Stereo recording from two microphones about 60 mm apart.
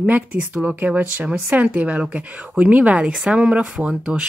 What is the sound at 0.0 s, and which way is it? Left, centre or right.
A woman's voice, right.